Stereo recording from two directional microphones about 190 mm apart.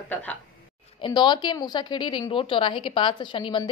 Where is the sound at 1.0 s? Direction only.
25° left (ahead or behind).